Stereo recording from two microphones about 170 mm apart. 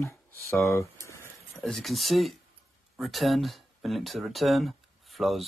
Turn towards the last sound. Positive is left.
turn(degrees=0)  # may be behind; listen again after turning